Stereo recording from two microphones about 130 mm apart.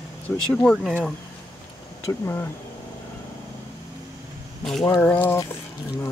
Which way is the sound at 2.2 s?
15° left (ahead or behind).